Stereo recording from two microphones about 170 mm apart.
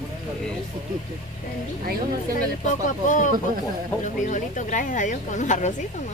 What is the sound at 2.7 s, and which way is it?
Speech, 50° left (ahead or behind).